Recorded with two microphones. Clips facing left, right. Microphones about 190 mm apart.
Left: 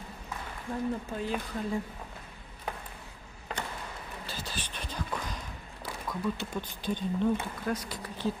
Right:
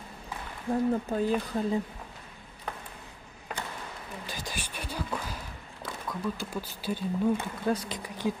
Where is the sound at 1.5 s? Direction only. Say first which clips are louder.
Right 5 dB; 35° right (ahead or behind).